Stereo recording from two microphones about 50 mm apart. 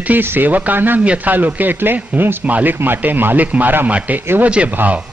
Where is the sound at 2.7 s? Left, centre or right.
Right.